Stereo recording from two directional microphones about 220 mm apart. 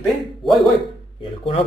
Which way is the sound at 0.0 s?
Centre (ahead or behind).